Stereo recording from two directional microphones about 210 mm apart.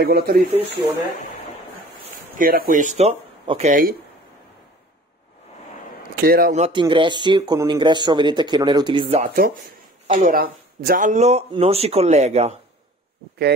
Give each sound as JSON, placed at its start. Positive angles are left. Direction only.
{"t": 0.0, "sound": "speech", "side_deg": -50}
{"t": 2.3, "sound": "speech", "side_deg": -45}
{"t": 6.2, "sound": "speech", "side_deg": -45}
{"t": 6.6, "sound": "speech", "side_deg": -25}
{"t": 9.2, "sound": "speech", "side_deg": -40}